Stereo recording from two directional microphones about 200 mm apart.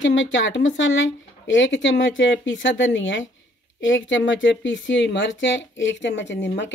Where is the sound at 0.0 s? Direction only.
65° left (ahead or behind).